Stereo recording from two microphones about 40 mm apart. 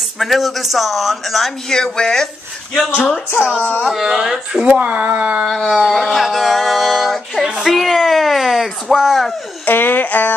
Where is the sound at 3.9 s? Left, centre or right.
Centre.